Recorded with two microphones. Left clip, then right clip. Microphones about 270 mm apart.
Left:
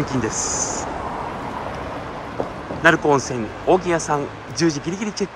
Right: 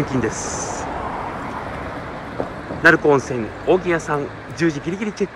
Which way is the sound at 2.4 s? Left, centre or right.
Left.